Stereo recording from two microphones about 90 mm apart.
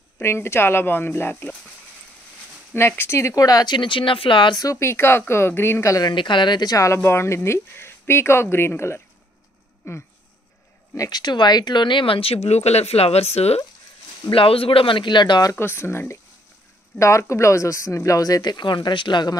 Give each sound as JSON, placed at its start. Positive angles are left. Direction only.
{"t": 0.2, "sound": "speech", "side_deg": 30}
{"t": 3.0, "sound": "speech", "side_deg": 30}
{"t": 4.6, "sound": "speech", "side_deg": 35}
{"t": 6.0, "sound": "speech", "side_deg": 60}
{"t": 6.8, "sound": "speech", "side_deg": 30}
{"t": 11.0, "sound": "speech", "side_deg": 45}
{"t": 14.3, "sound": "speech", "side_deg": 90}
{"t": 15.6, "sound": "speech", "side_deg": 25}